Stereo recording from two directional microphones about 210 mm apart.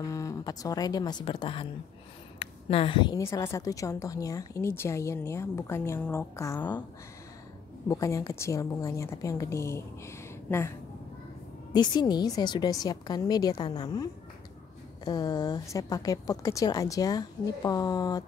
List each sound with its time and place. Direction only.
0.0 s a woman's voice: 15° left (ahead or behind)
7.9 s a woman's voice: 15° left (ahead or behind)
11.7 s a woman's voice: 20° left (ahead or behind)
15.0 s a woman's voice: 20° left (ahead or behind)